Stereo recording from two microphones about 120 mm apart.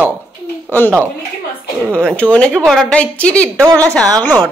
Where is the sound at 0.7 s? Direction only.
15° left (ahead or behind).